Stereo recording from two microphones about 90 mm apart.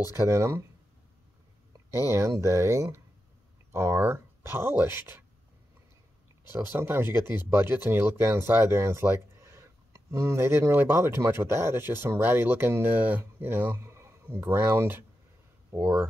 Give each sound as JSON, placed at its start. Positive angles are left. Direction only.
{"t": 0.0, "sound": "speech", "side_deg": -30}
{"t": 2.0, "sound": "speech", "side_deg": -35}
{"t": 6.5, "sound": "speech", "side_deg": -25}